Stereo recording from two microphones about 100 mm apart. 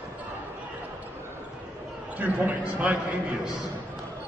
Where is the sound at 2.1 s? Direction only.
15° right (ahead or behind).